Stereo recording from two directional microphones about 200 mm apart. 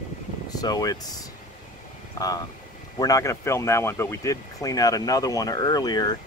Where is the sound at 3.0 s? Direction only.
15° left (ahead or behind).